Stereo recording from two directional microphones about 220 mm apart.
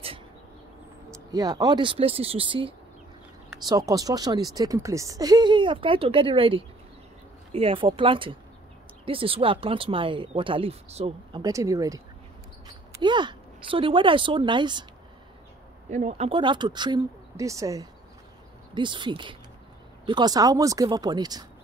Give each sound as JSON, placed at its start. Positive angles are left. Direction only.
{"t": 1.3, "sound": "speech", "side_deg": -15}
{"t": 11.4, "sound": "speech", "side_deg": -15}
{"t": 13.0, "sound": "speech", "side_deg": -20}
{"t": 15.9, "sound": "speech", "side_deg": -30}